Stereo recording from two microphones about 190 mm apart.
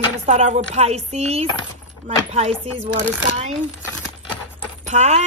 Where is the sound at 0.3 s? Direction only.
35° right (ahead or behind).